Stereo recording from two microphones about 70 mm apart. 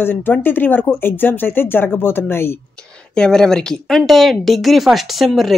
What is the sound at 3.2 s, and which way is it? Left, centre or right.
Speech, centre.